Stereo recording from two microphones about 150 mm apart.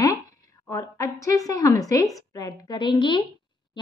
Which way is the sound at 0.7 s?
20° left (ahead or behind).